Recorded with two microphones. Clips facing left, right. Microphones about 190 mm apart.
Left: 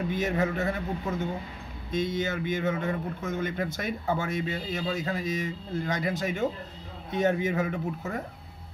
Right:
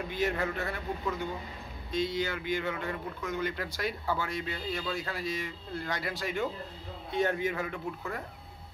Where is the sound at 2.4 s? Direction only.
20° left (ahead or behind).